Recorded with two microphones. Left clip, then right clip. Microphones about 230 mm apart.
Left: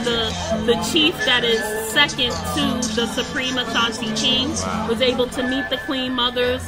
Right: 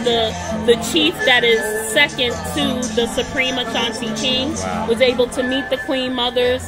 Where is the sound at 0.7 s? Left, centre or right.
Centre.